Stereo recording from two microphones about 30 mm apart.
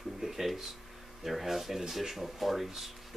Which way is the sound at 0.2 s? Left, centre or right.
Centre.